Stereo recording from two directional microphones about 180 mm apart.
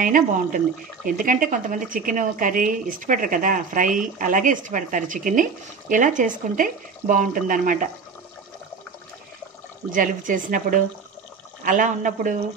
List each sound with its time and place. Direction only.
0.0 s speech: 50° right (ahead or behind)
9.9 s speech: 50° right (ahead or behind)